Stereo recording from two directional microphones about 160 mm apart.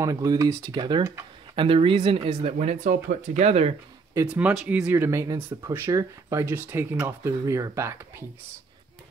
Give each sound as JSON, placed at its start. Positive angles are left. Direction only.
{"t": 0.0, "sound": "speech", "side_deg": -20}
{"t": 1.5, "sound": "speech", "side_deg": -35}
{"t": 4.3, "sound": "speech", "side_deg": -10}